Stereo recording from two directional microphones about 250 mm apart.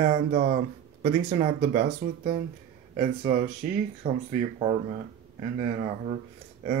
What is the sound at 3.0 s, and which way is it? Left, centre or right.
Speech, right.